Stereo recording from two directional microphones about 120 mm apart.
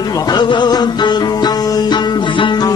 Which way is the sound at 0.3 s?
40° left (ahead or behind).